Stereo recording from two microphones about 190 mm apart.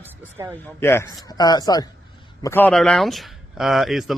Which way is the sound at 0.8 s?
15° left (ahead or behind).